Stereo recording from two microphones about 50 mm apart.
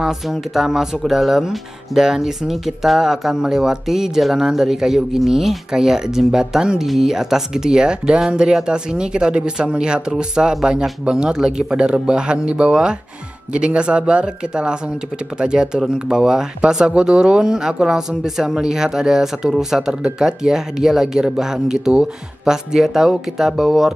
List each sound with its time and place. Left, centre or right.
0.0 s speech: centre